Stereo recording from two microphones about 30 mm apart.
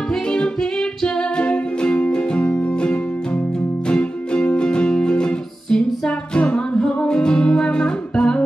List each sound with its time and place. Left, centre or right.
0.1 s music: left